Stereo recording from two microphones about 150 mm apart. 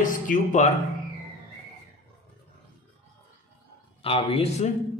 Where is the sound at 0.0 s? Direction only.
60° left (ahead or behind).